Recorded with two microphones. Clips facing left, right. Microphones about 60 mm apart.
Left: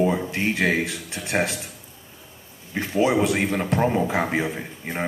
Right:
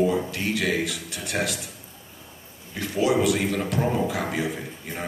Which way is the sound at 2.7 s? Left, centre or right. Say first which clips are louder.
Left 2 dB; left.